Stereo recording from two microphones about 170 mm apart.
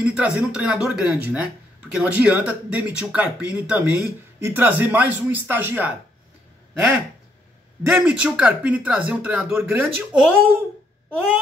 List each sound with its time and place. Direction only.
0.0 s speech: 5° right (ahead or behind)
7.8 s speech: 10° right (ahead or behind)